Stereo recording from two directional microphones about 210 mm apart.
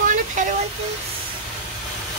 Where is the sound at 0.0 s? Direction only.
35° right (ahead or behind).